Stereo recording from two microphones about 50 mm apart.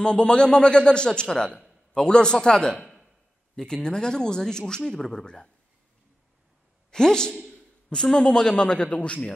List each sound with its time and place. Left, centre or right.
0.0 s a woman's voice: centre
6.9 s a woman's voice: centre